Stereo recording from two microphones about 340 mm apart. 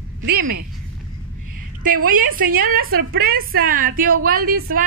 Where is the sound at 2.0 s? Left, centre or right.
Right.